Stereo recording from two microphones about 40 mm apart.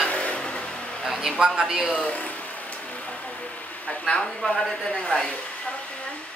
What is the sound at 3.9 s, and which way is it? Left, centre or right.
Speech, left.